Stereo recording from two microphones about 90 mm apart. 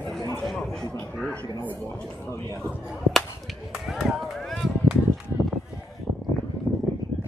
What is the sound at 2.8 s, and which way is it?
Whip, centre (ahead or behind).